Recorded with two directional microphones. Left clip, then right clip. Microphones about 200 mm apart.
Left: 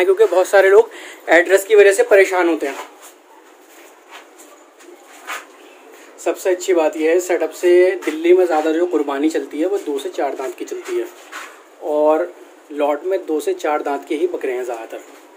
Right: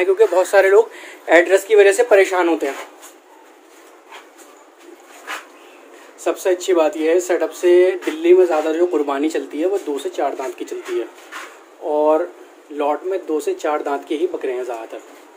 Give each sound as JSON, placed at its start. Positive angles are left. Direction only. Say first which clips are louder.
{"t": 0.0, "sound": "speech", "louder": "left 1 dB", "side_deg": 15}
{"t": 6.2, "sound": "speech", "louder": "even", "side_deg": 5}